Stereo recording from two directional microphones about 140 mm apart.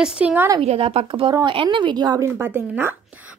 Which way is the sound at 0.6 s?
45° right (ahead or behind).